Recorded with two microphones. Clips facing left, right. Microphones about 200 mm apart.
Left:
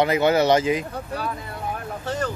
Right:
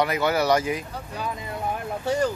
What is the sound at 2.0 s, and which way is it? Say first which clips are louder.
Speech: right 5 dB; 10° right (ahead or behind).